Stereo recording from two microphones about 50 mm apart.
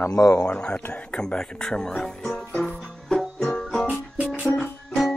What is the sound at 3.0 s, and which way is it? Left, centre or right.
Music, centre.